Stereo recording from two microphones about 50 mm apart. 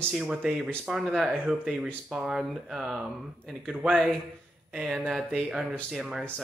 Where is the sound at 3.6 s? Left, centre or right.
Right.